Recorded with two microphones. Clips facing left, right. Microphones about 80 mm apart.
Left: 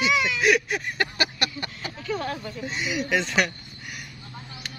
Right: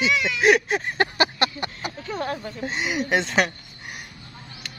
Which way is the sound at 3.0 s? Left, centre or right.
Right.